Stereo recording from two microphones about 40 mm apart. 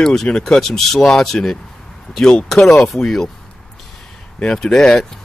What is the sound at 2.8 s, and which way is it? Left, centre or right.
Speech, centre.